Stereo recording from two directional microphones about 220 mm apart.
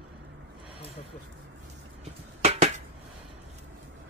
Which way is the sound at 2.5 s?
30° right (ahead or behind).